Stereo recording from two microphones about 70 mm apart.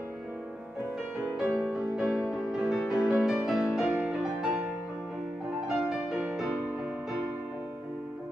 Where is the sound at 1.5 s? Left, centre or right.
Centre.